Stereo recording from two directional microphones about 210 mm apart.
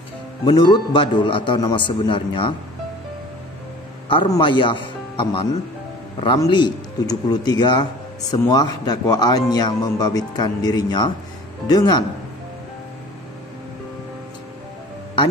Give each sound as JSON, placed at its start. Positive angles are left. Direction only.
{"t": 0.5, "sound": "speech", "side_deg": 20}
{"t": 4.1, "sound": "speech", "side_deg": 25}